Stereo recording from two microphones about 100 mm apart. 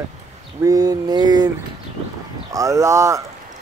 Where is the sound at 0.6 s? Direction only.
40° right (ahead or behind).